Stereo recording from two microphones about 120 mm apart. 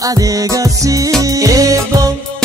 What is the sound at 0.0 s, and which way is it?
Music, 30° right (ahead or behind).